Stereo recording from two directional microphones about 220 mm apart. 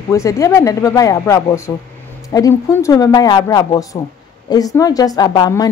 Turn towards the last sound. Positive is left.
turn(degrees=20)  # may be behind; listen again after turning